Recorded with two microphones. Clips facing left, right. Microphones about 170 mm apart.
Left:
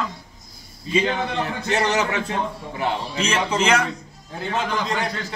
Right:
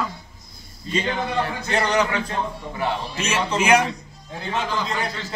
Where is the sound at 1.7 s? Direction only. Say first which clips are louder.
Left 1 dB; 25° left (ahead or behind).